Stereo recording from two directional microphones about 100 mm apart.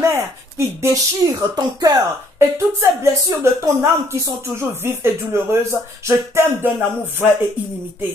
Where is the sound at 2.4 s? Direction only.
30° right (ahead or behind).